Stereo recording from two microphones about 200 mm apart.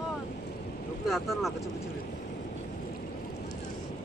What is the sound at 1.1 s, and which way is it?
Speech, centre (ahead or behind).